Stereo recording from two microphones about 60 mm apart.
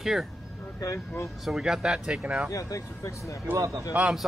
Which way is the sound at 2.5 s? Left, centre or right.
Left.